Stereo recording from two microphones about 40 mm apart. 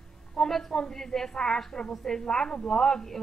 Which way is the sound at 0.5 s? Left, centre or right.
Centre.